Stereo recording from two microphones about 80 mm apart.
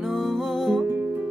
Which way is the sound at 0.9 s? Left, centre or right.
Right.